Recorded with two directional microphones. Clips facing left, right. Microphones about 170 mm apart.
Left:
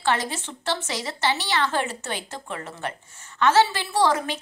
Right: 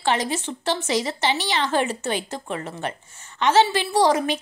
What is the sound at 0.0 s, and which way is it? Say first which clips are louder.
A woman's voice: right 2 dB; 15° right (ahead or behind).